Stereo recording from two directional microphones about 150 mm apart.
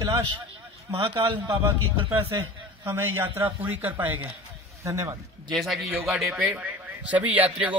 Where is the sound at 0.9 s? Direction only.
35° right (ahead or behind).